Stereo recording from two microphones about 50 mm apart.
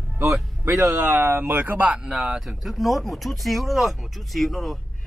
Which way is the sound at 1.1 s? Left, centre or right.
Right.